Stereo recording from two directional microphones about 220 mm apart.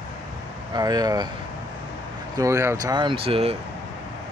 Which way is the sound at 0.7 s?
15° right (ahead or behind).